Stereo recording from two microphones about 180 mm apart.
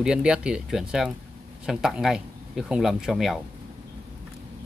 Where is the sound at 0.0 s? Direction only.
5° right (ahead or behind).